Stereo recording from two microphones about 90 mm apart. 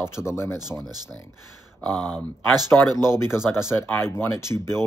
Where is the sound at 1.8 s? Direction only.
10° left (ahead or behind).